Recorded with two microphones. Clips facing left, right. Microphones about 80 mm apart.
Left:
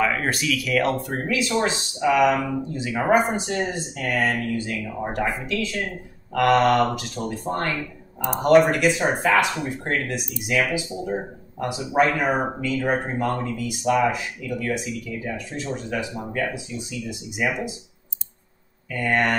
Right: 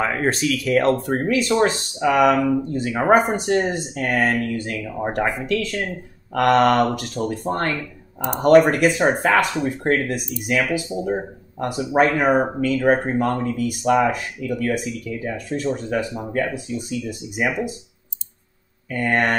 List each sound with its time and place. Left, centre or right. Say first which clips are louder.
0.0 s speech: right 2 dB; right
18.9 s speech: right 2 dB; right